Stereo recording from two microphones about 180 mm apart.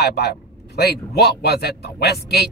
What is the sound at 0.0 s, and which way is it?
A man's voice, 65° left (ahead or behind).